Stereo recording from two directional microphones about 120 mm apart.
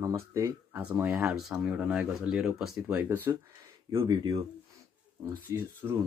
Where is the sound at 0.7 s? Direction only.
15° right (ahead or behind).